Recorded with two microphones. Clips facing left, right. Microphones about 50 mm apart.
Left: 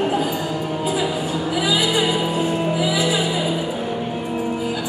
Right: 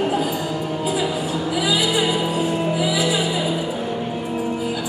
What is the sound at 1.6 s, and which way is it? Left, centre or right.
Music, centre.